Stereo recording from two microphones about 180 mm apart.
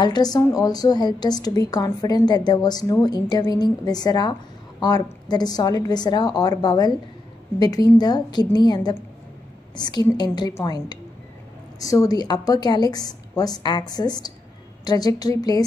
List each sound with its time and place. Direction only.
0.0 s a woman's voice: 20° left (ahead or behind)